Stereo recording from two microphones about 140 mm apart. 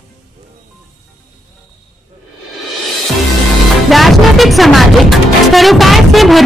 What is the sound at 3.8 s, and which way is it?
Speech, centre (ahead or behind).